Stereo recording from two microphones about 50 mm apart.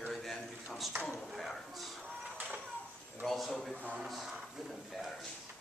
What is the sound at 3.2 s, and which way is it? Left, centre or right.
Speech, centre.